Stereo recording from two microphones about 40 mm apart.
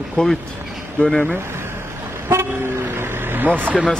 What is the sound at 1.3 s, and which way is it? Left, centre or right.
Speech, right.